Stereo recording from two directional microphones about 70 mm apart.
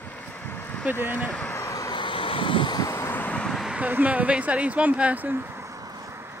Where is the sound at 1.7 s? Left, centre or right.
Left.